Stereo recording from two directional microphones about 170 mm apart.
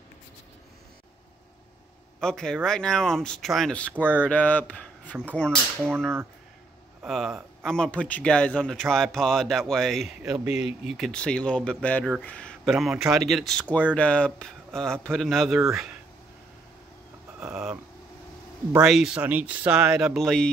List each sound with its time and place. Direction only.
2.1 s speech: 5° left (ahead or behind)
18.9 s speech: 5° right (ahead or behind)